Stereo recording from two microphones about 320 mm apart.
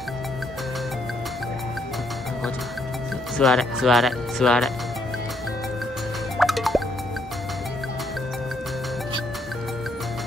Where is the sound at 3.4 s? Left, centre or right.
Centre.